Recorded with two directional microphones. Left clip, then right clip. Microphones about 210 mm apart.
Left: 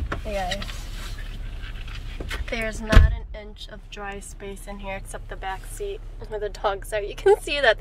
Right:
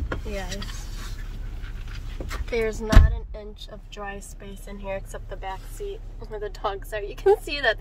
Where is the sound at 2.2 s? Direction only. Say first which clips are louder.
Left 3 dB; 25° right (ahead or behind).